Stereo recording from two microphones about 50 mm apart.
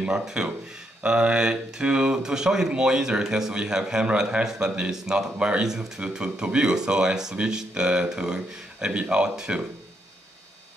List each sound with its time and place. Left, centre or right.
0.2 s speech: centre